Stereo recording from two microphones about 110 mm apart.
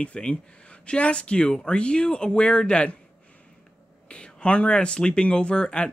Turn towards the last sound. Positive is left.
turn(degrees=10)  # may be behind; listen again after turning